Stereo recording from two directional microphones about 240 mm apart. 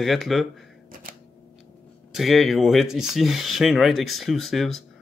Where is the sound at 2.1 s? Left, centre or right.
Centre.